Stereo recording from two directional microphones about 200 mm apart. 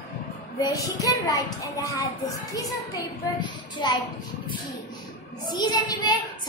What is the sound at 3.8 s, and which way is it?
Speech, 20° left (ahead or behind).